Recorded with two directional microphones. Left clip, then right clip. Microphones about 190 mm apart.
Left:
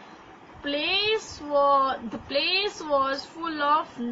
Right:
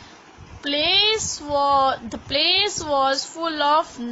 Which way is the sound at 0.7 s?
60° right (ahead or behind).